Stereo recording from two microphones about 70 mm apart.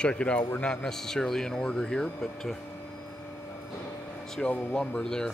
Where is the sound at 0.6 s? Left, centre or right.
Centre.